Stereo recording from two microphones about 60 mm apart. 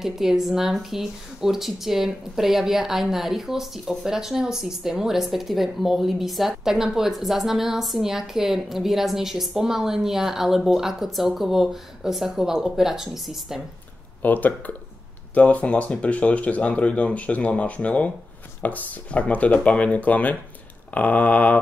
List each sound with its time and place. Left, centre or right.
0.0 s speech: centre
14.2 s speech: left